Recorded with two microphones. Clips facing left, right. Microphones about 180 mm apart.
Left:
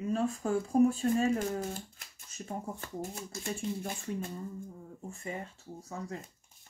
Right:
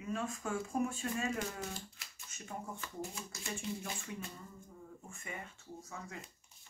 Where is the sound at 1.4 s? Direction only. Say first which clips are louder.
Left 7 dB; 50° left (ahead or behind).